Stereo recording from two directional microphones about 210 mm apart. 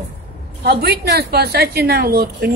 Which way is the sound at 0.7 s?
50° right (ahead or behind).